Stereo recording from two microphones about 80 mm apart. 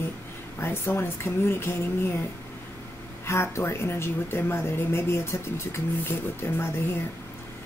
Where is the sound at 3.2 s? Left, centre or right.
Left.